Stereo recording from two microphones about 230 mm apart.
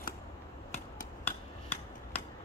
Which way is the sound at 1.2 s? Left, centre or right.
Centre.